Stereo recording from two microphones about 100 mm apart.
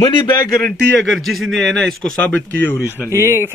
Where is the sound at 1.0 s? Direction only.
Centre (ahead or behind); by 3.1 s 20° left (ahead or behind).